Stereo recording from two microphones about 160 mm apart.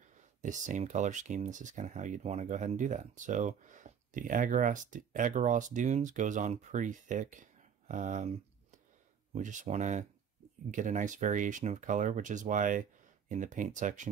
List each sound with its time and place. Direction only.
0.0 s speech: 50° right (ahead or behind)